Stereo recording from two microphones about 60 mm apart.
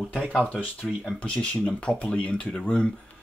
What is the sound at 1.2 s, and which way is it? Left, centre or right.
Speech, centre.